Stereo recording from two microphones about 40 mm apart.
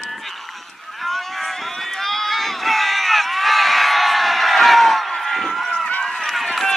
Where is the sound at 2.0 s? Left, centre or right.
Centre.